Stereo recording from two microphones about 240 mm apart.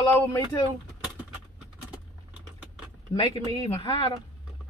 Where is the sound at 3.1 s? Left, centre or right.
Left.